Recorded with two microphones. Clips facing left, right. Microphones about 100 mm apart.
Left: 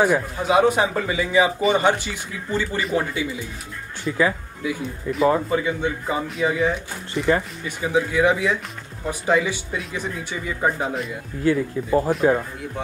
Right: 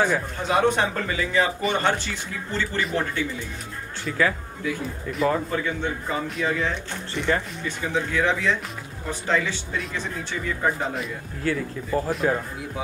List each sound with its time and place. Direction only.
0.0 s a man's voice: 10° left (ahead or behind)
11.4 s speech: 20° left (ahead or behind)